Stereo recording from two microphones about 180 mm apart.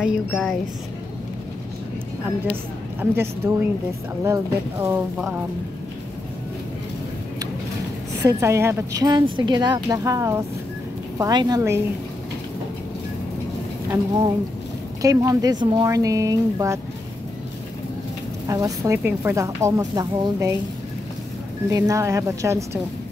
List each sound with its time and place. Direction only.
0.0 s speech: 5° right (ahead or behind)
3.0 s speech: 15° right (ahead or behind)
8.2 s a woman's voice: 15° right (ahead or behind)
15.0 s a woman's voice: 20° right (ahead or behind)
18.5 s speech: 15° right (ahead or behind)
21.6 s speech: 20° right (ahead or behind)